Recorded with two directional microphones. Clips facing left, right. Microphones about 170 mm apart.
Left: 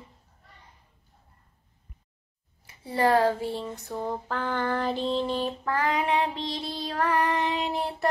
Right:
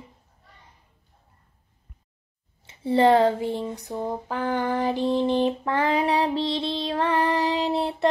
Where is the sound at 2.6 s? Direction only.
25° right (ahead or behind).